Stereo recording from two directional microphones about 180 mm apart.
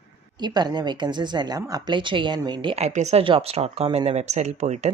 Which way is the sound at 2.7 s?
40° right (ahead or behind).